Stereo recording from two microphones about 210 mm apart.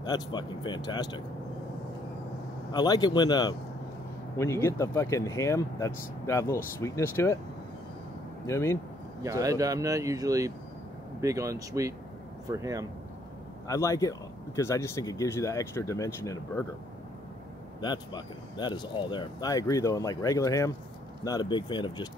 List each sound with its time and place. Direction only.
0.0 s speech: 20° left (ahead or behind)
2.7 s speech: 20° left (ahead or behind)
8.5 s speech: 15° left (ahead or behind)
9.2 s speech: 15° right (ahead or behind)
13.7 s speech: 15° left (ahead or behind)
17.7 s speech: 20° left (ahead or behind)